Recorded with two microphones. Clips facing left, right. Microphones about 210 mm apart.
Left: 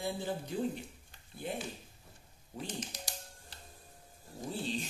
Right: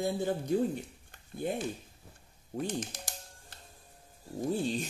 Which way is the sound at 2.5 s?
50° right (ahead or behind).